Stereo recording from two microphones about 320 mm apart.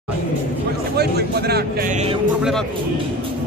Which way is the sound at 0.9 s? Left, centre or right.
Right.